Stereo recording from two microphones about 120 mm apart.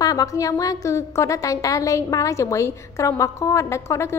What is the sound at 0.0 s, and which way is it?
A woman's voice, 30° left (ahead or behind).